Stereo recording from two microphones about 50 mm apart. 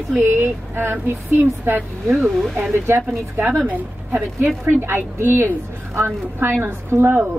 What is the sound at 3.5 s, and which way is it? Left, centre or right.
Speech, right.